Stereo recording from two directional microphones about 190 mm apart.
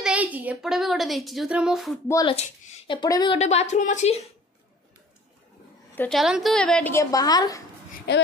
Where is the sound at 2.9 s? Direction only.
20° left (ahead or behind).